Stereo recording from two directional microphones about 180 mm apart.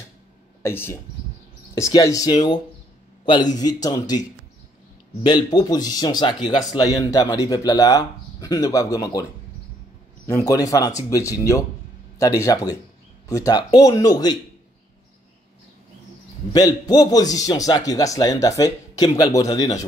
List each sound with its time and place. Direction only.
0.6 s speech: 15° left (ahead or behind)
10.2 s speech: 15° left (ahead or behind)
16.5 s speech: 20° left (ahead or behind)